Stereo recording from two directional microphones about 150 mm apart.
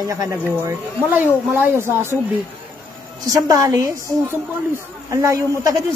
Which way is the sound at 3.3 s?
20° right (ahead or behind).